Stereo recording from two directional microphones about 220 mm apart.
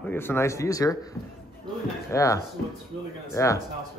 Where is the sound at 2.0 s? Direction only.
15° left (ahead or behind).